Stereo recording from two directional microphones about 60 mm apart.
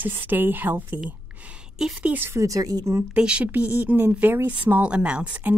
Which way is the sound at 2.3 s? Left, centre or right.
Right.